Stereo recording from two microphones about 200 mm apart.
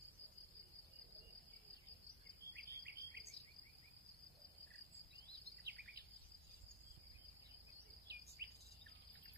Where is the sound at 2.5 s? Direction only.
55° right (ahead or behind).